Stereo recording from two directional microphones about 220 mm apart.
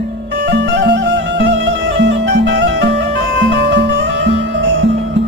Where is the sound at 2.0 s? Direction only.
55° right (ahead or behind).